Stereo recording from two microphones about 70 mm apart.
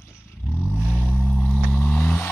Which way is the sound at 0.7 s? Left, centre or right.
Centre.